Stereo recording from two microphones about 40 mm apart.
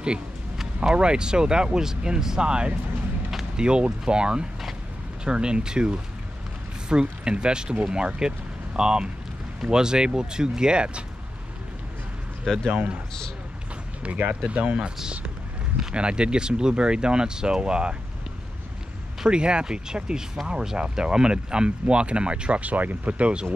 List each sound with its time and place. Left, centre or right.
0.8 s speech: right
12.5 s speech: centre
14.0 s speech: right
15.9 s speech: right
19.2 s speech: right
22.6 s speech: right